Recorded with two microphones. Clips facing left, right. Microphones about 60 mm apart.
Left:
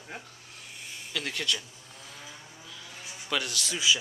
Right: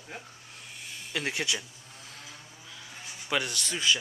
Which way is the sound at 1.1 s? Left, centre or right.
Centre.